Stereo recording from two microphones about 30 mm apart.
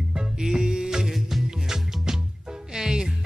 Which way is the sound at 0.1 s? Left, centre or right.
Right.